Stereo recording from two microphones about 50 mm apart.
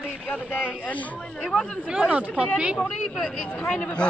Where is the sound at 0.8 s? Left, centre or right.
Left.